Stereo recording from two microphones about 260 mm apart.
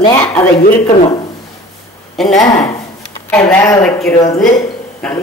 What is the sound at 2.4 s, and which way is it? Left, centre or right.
A woman's voice, centre.